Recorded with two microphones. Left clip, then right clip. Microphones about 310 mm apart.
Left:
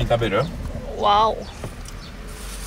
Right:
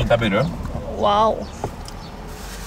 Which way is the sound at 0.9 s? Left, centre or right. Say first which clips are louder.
Even; centre.